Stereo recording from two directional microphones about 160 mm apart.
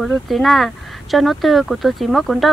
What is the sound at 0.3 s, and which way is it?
Speech, centre (ahead or behind).